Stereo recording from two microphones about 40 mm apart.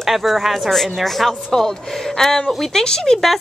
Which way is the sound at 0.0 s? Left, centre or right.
Centre.